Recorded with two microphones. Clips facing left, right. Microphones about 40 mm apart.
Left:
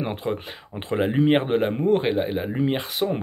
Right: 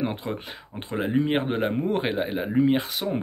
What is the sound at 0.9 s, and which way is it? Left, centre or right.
Speech, left.